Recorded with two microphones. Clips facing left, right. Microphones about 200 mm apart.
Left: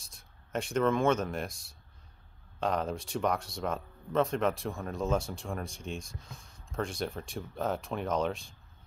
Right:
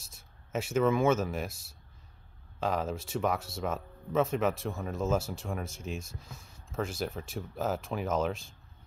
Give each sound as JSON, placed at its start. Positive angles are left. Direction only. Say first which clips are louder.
{"t": 0.0, "sound": "speech", "louder": "right 1 dB", "side_deg": -5}